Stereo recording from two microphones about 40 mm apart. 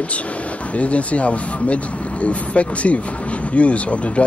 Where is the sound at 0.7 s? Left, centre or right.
Left.